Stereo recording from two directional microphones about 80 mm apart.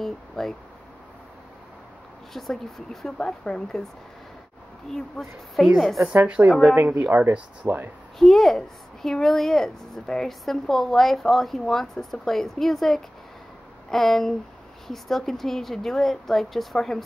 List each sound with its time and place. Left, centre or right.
0.0 s speech: centre
2.3 s a woman's voice: centre
4.9 s a woman's voice: centre
6.2 s a woman's voice: centre
8.2 s a woman's voice: centre